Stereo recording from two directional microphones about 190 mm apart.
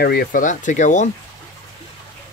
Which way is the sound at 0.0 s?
55° left (ahead or behind).